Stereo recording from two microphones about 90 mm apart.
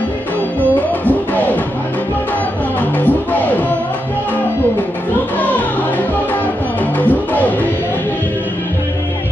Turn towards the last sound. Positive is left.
turn(degrees=20)  # may be behind; listen again after turning